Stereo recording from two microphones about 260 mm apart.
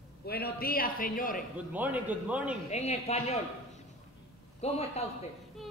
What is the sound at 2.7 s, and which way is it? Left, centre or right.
Speech, left.